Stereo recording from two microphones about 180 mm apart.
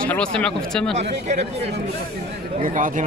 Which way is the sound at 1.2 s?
40° right (ahead or behind).